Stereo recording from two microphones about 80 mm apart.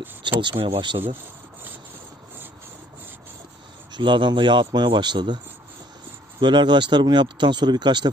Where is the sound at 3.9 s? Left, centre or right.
Right.